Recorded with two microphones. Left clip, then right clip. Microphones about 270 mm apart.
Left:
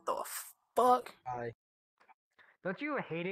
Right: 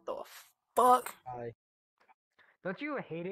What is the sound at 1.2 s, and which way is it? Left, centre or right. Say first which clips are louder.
Speech: left 2 dB; left.